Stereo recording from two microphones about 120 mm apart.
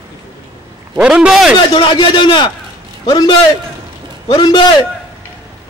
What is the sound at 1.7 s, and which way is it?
A man's voice, 45° left (ahead or behind).